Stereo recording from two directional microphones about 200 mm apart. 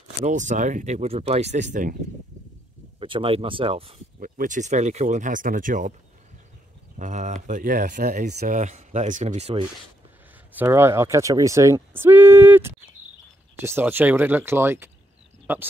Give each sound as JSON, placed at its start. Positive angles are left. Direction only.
{"t": 0.2, "sound": "speech", "side_deg": -40}
{"t": 3.0, "sound": "speech", "side_deg": -25}
{"t": 4.2, "sound": "speech", "side_deg": -40}
{"t": 7.0, "sound": "speech", "side_deg": -40}
{"t": 8.3, "sound": "speech", "side_deg": -50}
{"t": 8.5, "sound": "speech", "side_deg": -35}
{"t": 10.5, "sound": "speech", "side_deg": -10}